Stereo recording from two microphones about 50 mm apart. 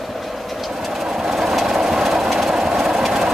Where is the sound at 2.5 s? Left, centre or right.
Centre.